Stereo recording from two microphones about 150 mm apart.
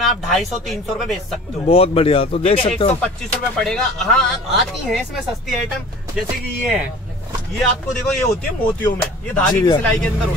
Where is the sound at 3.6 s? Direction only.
5° left (ahead or behind).